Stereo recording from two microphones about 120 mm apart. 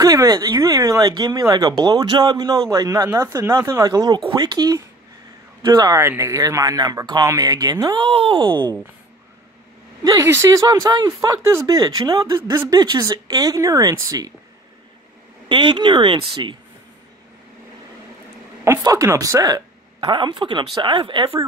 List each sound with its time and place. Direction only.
0.0 s speech: 30° right (ahead or behind)
2.0 s speech: 45° right (ahead or behind)
2.3 s speech: 30° right (ahead or behind)
8.0 s speech: 50° right (ahead or behind)
10.0 s speech: 25° right (ahead or behind)
15.4 s speech: 40° right (ahead or behind)
18.6 s speech: 25° right (ahead or behind); by 21.4 s 45° right (ahead or behind)